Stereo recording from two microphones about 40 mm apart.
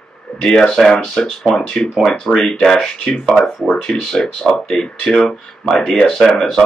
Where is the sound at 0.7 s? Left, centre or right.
Centre.